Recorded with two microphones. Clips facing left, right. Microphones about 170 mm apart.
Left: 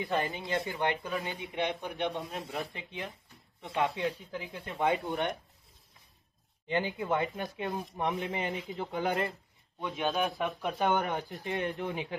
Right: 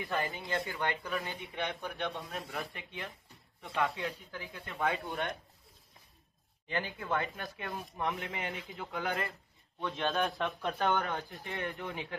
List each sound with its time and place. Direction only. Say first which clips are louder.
0.0 s speech: left 3 dB; 20° left (ahead or behind)
6.7 s speech: left 4 dB; 15° left (ahead or behind)